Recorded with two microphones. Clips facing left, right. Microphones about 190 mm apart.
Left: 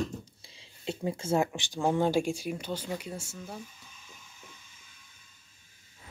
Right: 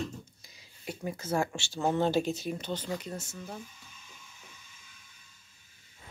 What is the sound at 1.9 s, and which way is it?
Speech, 10° left (ahead or behind).